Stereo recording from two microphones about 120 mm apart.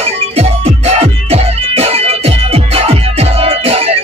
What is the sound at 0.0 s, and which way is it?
Music, 60° right (ahead or behind).